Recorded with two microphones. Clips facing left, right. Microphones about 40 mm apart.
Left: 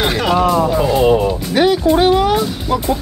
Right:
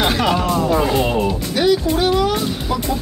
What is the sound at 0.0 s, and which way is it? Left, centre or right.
Music, centre.